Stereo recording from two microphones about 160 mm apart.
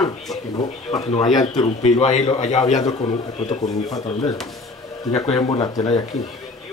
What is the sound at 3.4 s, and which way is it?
Speech, 25° left (ahead or behind).